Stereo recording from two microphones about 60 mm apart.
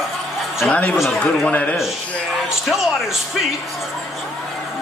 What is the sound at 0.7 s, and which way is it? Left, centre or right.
Speech, left.